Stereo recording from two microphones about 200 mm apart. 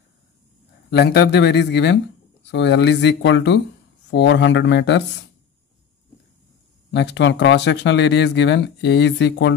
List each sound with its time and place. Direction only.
0.8 s speech: 55° left (ahead or behind)
6.9 s speech: 60° left (ahead or behind)